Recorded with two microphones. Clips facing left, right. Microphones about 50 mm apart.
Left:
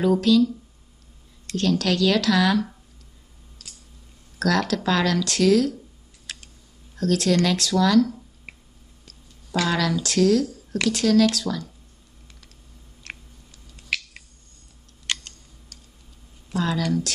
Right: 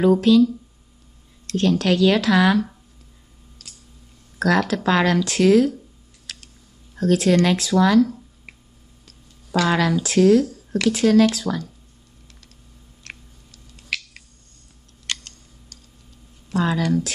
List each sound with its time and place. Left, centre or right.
0.0 s speech: centre
1.6 s speech: centre
4.4 s speech: centre
6.3 s a sound: left
7.0 s speech: right
9.7 s speech: right
13.0 s a sound: centre
16.5 s speech: right